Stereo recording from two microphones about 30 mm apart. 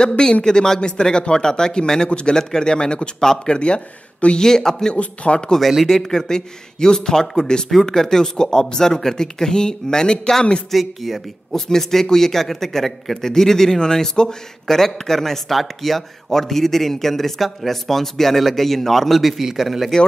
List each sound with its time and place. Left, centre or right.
0.2 s speech: left
2.3 s speech: left
4.4 s speech: centre
4.9 s speech: left
5.9 s speech: centre
10.7 s a woman's voice: centre
11.5 s speech: centre
14.7 s a woman's voice: centre